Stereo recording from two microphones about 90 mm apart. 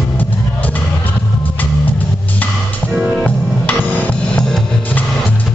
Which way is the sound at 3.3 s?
20° left (ahead or behind).